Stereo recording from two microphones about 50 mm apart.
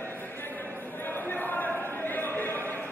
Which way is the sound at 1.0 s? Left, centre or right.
Left.